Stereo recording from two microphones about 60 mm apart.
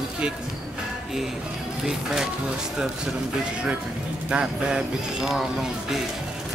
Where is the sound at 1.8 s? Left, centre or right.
Centre.